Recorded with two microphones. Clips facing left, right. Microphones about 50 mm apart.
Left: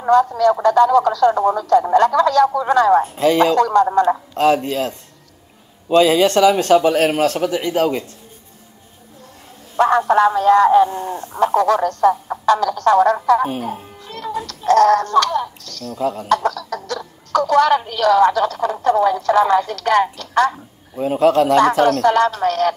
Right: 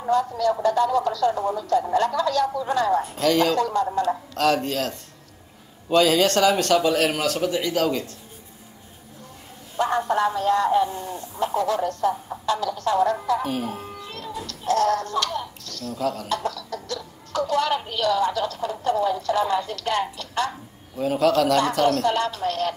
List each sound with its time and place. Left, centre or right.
0.0 s speech: left
3.0 s speech: left
3.5 s a man's voice: left
4.3 s a man's voice: left
5.9 s a man's voice: left
9.8 s speech: left
10.9 s speech: left
11.3 s speech: left
14.0 s a sound: left
14.4 s speech: left
16.0 s a man's voice: left
16.3 s speech: left
20.9 s a man's voice: left
21.8 s speech: left